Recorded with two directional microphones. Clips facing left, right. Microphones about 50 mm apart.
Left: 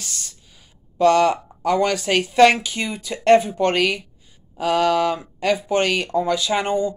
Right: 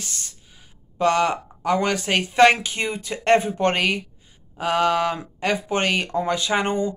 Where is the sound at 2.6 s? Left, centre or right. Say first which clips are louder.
Even; right.